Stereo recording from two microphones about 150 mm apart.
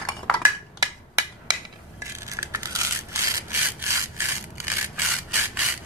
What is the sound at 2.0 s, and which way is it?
Rub, 20° right (ahead or behind).